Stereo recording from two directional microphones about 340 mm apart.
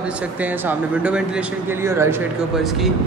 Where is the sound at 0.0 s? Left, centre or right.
Centre.